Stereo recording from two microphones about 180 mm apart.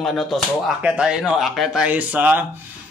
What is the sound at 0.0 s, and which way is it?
Speech, centre (ahead or behind).